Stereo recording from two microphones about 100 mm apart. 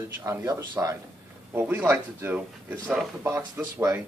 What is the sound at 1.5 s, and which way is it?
Speech, 25° right (ahead or behind).